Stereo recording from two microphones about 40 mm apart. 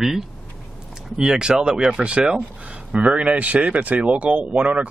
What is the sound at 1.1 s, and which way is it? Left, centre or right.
Speech, right.